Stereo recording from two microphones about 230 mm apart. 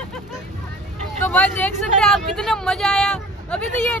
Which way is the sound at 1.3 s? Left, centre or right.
Centre.